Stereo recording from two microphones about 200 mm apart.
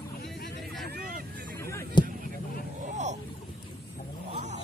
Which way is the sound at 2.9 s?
35° right (ahead or behind).